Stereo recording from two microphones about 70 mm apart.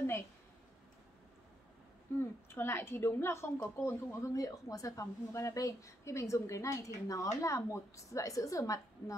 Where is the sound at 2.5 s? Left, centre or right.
Left.